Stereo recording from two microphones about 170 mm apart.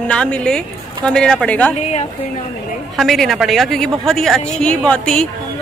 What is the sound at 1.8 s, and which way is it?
Speech, 40° left (ahead or behind).